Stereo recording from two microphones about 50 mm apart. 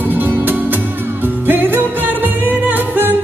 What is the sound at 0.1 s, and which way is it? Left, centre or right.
Music, right.